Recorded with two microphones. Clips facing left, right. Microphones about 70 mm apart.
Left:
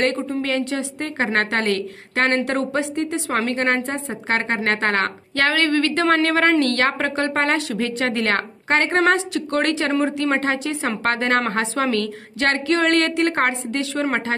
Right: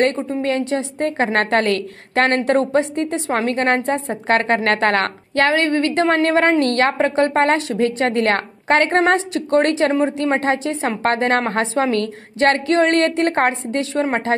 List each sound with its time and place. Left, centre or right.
0.0 s a woman's voice: right
4.3 s a woman's voice: right
9.0 s a woman's voice: right